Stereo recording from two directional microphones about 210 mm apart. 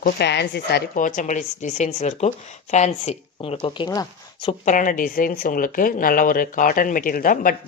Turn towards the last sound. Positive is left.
turn(degrees=40)  # may be behind; listen again after turning